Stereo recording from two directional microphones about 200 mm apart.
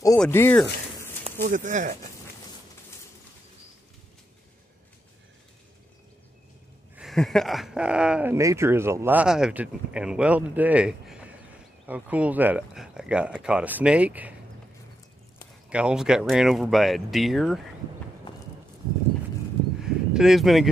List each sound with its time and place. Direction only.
0.2 s speech: 10° left (ahead or behind)
1.2 s speech: 40° right (ahead or behind)
7.0 s speech: centre (ahead or behind)
15.7 s speech: 5° right (ahead or behind)
18.3 s walk: 25° left (ahead or behind)
19.8 s a sound: centre (ahead or behind)